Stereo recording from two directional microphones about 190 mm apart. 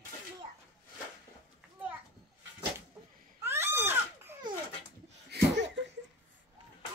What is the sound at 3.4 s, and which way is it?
Crying, 10° right (ahead or behind).